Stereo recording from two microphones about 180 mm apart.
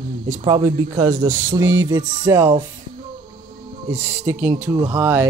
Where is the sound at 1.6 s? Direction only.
90° right.